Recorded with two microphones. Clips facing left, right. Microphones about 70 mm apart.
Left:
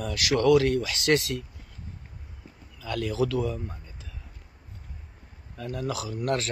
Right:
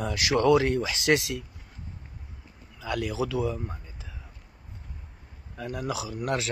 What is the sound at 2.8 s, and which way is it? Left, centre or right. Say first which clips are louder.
Speech: left 2 dB; centre.